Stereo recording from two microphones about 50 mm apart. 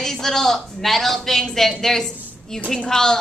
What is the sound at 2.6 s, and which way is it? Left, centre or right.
Speech, centre.